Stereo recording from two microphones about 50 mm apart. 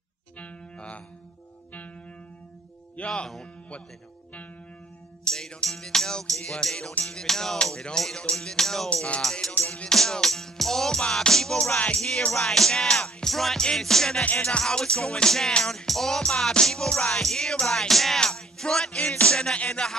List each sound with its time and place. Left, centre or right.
0.4 s music: left
3.0 s speech: left
5.2 s music: centre
8.9 s music: left
9.2 s music: centre
9.5 s music: left
9.8 s music: centre
14.2 s music: left
14.6 s music: centre